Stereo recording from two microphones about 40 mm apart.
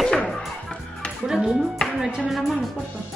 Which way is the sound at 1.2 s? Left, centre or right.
Centre.